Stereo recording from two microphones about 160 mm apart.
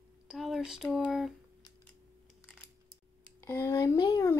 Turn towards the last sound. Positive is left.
turn(degrees=20)  # may be behind; listen again after turning